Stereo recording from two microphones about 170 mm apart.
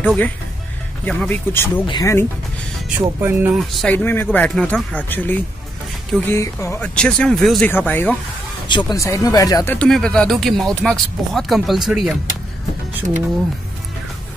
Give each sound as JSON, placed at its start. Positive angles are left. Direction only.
{"t": 0.0, "sound": "speech", "side_deg": 10}
{"t": 3.0, "sound": "speech", "side_deg": -15}
{"t": 3.5, "sound": "speech", "side_deg": 5}
{"t": 8.6, "sound": "speech", "side_deg": 25}
{"t": 9.8, "sound": "speech", "side_deg": 5}